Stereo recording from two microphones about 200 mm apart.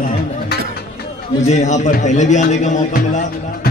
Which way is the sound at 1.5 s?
35° left (ahead or behind).